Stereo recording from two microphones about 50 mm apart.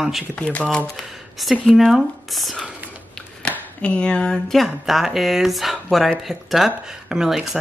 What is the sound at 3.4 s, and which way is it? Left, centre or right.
Speech, left.